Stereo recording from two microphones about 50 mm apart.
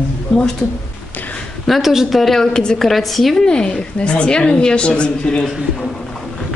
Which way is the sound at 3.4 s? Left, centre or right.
Centre.